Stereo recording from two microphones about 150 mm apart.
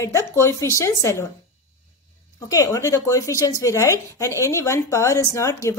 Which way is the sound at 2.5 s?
25° left (ahead or behind).